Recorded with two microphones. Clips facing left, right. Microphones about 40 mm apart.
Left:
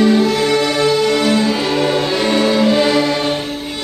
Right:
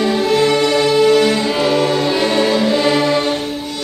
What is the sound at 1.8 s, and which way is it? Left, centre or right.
Music, left.